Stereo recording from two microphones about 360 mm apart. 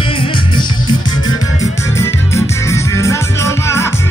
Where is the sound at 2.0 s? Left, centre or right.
Centre.